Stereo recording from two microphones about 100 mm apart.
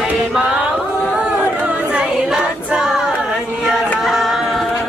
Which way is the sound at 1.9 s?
10° right (ahead or behind).